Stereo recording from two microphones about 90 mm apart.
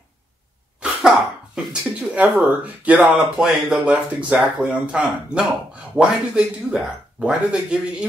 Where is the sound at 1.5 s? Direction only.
10° right (ahead or behind).